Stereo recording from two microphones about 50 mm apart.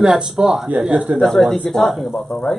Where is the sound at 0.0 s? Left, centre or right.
Centre.